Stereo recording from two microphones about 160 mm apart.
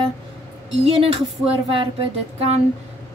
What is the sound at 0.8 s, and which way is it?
Speech, 40° right (ahead or behind).